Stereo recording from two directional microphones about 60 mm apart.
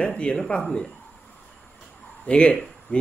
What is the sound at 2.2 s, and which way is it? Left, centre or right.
Speech, centre.